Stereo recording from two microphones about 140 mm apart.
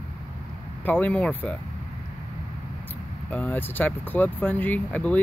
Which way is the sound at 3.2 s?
10° left (ahead or behind).